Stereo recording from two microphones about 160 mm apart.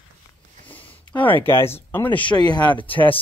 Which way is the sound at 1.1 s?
10° left (ahead or behind).